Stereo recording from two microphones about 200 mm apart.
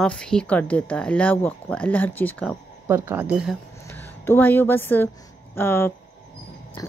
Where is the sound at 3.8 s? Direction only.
10° left (ahead or behind).